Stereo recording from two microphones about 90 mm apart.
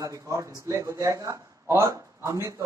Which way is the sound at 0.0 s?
35° right (ahead or behind).